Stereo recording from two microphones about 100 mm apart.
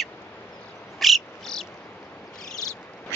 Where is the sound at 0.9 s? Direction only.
Centre (ahead or behind).